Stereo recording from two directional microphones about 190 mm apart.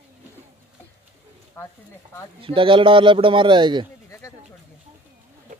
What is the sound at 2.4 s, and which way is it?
A man's voice, 25° right (ahead or behind).